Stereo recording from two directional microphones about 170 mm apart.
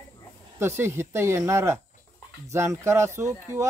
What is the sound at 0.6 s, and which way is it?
Speech, 15° right (ahead or behind).